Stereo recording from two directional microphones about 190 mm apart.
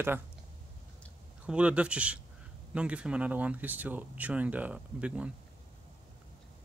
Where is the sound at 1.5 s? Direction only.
5° right (ahead or behind).